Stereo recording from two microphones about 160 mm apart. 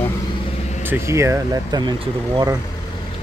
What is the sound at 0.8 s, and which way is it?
Speech, 15° right (ahead or behind).